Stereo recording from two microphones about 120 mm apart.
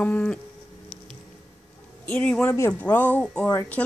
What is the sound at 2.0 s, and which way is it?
Speech, 15° left (ahead or behind).